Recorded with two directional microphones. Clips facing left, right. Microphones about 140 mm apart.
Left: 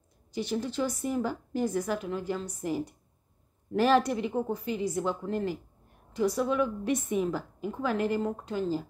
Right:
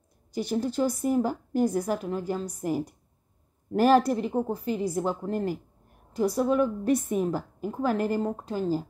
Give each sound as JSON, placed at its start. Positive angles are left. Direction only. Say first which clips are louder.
{"t": 0.3, "sound": "a woman's voice", "louder": "right 3 dB", "side_deg": -45}